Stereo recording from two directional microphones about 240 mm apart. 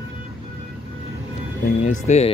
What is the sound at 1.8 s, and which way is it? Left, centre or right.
Speech, left.